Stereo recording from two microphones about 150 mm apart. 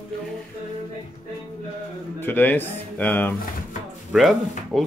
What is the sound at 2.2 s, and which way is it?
Speech, 15° left (ahead or behind).